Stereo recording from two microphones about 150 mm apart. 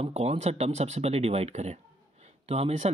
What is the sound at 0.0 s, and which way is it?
Speech, 45° right (ahead or behind).